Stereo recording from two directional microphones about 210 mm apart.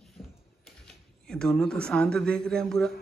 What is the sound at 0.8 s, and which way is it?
Speech, 5° left (ahead or behind).